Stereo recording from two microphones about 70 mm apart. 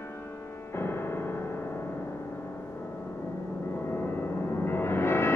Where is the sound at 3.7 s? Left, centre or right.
Left.